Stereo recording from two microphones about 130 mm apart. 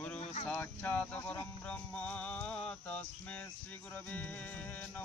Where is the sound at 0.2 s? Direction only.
55° left (ahead or behind).